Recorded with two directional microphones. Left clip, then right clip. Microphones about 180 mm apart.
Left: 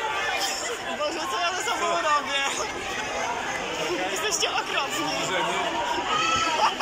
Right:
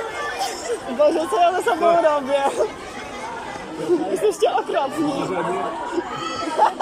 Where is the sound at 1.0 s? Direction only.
75° right (ahead or behind).